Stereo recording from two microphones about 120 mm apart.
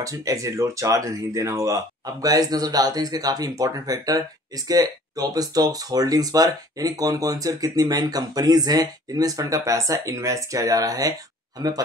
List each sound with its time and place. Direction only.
0.0 s speech: 30° right (ahead or behind)